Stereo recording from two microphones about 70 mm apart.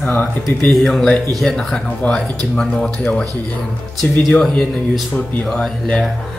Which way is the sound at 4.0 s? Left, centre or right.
Centre.